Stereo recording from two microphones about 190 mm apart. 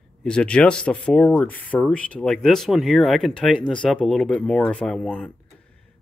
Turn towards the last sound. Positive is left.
turn(degrees=5)  # may be behind; listen again after turning